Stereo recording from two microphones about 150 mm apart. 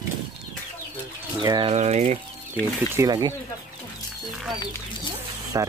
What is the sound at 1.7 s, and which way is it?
Speech, 50° right (ahead or behind).